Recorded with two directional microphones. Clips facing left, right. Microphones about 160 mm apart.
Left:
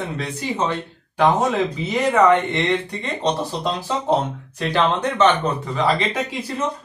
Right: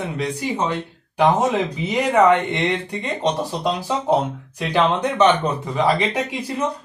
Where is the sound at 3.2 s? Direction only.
10° right (ahead or behind).